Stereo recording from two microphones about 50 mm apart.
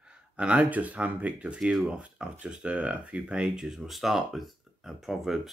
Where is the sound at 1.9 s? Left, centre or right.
Right.